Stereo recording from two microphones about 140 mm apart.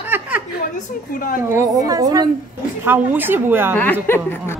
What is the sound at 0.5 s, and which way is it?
Speech, 90° left.